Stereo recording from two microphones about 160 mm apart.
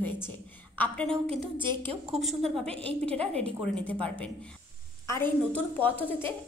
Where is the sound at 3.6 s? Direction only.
10° left (ahead or behind).